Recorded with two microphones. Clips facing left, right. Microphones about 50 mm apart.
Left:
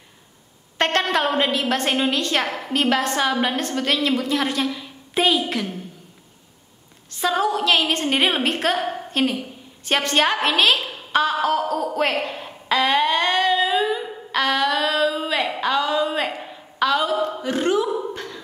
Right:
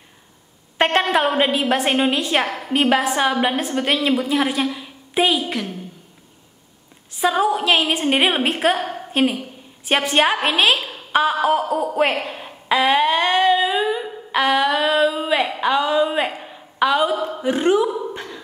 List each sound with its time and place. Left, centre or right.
0.7 s a woman's voice: centre
7.1 s a woman's voice: centre
9.1 s a woman's voice: centre
12.1 s humming: centre
15.6 s a woman's voice: centre
16.3 s a sound: centre